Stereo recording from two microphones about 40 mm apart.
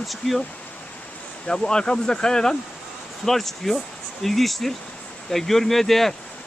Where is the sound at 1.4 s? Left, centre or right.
Centre.